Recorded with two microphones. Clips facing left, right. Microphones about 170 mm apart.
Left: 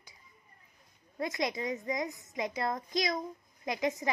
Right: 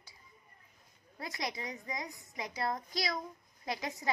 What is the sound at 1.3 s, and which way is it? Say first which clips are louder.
A woman's voice: left 6 dB; 20° left (ahead or behind).